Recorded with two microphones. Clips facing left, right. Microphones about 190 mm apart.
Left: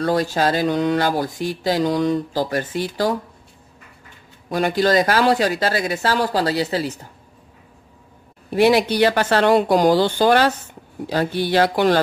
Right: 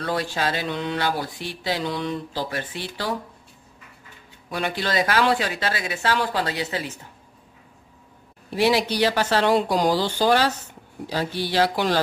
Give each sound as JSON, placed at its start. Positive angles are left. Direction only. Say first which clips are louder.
{"t": 0.0, "sound": "speech", "louder": "left 7 dB", "side_deg": 40}
{"t": 4.5, "sound": "speech", "louder": "left 8 dB", "side_deg": 40}
{"t": 8.5, "sound": "a woman's voice", "louder": "left 5 dB", "side_deg": 55}